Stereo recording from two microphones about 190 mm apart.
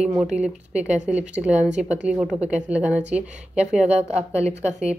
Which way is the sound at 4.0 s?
35° right (ahead or behind).